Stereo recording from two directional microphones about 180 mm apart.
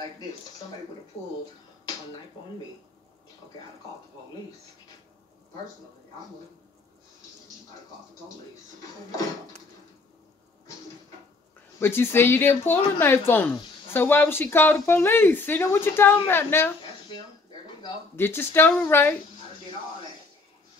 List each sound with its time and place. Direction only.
11.8 s speech: 10° left (ahead or behind)
16.8 s a sound: 25° left (ahead or behind)
18.1 s speech: 10° left (ahead or behind)